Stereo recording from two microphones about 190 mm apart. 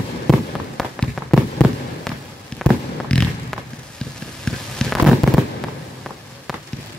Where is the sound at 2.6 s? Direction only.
5° left (ahead or behind).